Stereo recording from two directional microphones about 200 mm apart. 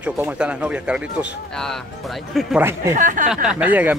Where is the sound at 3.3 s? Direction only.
5° right (ahead or behind).